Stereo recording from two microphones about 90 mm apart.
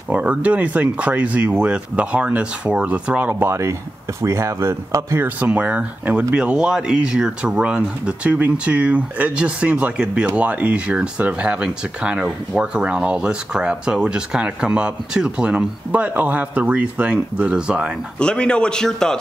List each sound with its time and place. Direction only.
0.1 s speech: 15° right (ahead or behind)
5.4 s speech: 15° right (ahead or behind)
18.2 s a man's voice: 10° left (ahead or behind)